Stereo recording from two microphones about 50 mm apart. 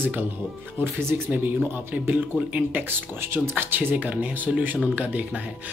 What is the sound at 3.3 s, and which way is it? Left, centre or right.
Speech, right.